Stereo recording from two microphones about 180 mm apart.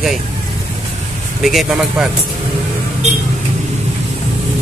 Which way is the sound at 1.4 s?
Centre (ahead or behind).